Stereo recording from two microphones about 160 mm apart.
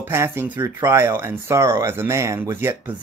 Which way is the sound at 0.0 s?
15° right (ahead or behind).